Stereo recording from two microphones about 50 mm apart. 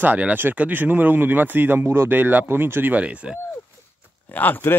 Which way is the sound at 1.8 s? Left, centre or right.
Right.